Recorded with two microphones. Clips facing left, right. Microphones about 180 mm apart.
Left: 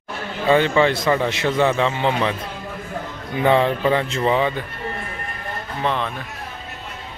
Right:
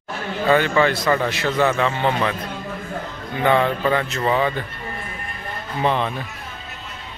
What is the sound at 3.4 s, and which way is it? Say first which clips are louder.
Speech: left 1 dB; 30° left (ahead or behind).